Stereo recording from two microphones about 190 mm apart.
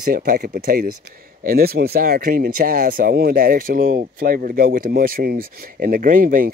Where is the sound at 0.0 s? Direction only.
45° right (ahead or behind).